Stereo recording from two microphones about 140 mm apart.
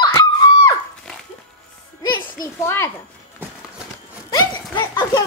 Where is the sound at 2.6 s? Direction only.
20° left (ahead or behind).